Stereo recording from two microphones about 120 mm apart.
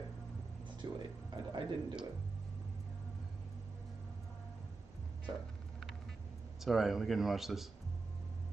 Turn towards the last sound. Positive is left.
turn(degrees=0)  # may be behind; listen again after turning